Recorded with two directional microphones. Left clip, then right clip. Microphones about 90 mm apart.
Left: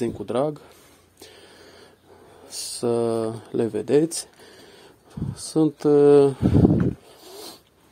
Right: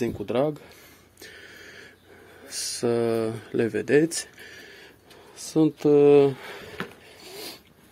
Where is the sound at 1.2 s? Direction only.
25° left (ahead or behind).